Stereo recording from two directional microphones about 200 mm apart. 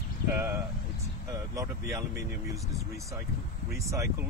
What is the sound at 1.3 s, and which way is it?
Speech, 15° right (ahead or behind).